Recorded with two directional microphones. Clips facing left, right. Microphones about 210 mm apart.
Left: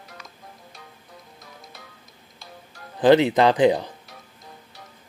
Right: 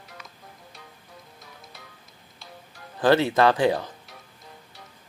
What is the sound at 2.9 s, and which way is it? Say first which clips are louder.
Speech: left 4 dB; 20° left (ahead or behind).